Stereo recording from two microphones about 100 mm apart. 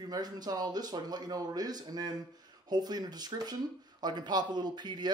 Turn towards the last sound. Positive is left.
turn(degrees=-45)  # may be behind; listen again after turning